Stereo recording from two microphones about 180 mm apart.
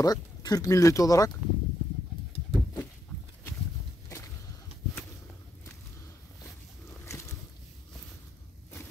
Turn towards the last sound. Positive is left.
turn(degrees=15)  # may be behind; listen again after turning